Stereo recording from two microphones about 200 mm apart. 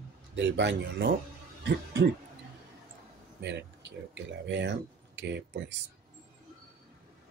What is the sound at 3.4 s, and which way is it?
Speech, 60° right (ahead or behind).